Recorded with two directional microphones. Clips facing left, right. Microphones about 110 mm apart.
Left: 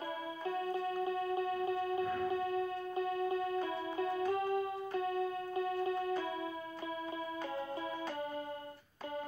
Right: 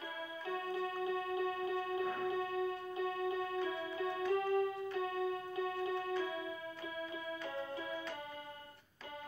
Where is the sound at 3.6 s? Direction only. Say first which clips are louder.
Left 2 dB; 40° left (ahead or behind).